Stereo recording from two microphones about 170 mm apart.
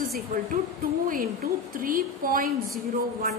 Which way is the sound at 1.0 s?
55° right (ahead or behind).